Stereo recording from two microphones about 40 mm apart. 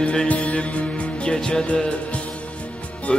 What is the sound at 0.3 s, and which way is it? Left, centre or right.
Music, left.